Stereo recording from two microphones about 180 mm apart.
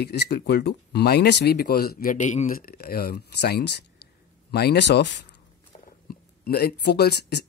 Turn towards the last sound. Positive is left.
turn(degrees=65)  # may be behind; listen again after turning